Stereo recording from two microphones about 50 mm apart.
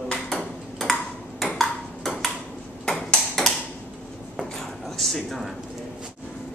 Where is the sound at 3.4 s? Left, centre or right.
Centre.